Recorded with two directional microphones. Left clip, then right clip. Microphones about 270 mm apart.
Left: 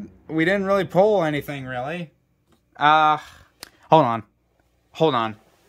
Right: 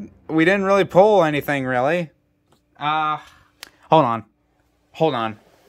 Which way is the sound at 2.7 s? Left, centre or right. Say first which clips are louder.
Left 5 dB; centre.